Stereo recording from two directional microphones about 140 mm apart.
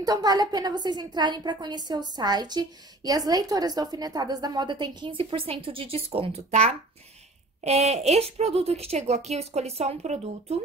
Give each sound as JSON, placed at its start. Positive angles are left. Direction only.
{"t": 0.0, "sound": "a woman's voice", "side_deg": -30}